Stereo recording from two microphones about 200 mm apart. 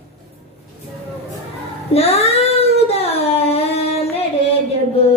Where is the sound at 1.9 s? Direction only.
30° left (ahead or behind).